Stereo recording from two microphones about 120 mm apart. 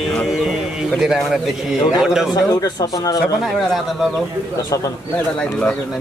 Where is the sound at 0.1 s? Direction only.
Centre (ahead or behind).